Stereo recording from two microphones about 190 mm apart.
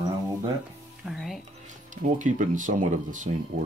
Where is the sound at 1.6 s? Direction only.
40° right (ahead or behind).